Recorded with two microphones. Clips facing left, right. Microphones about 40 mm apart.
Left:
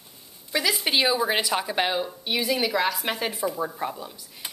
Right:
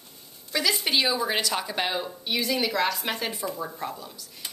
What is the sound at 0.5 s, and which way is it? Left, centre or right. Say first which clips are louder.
A woman's voice: left 1 dB; centre.